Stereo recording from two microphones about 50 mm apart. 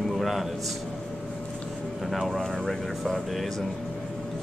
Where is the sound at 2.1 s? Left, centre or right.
Centre.